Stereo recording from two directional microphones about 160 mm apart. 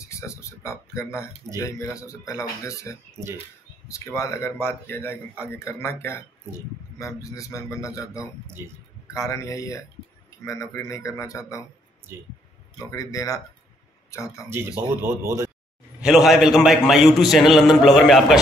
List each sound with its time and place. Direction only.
0.0 s a sound: 20° left (ahead or behind)
1.6 s speech: 20° left (ahead or behind)
12.9 s speech: 20° left (ahead or behind)
14.5 s speech: 15° right (ahead or behind)
16.0 s a man's voice: 5° right (ahead or behind)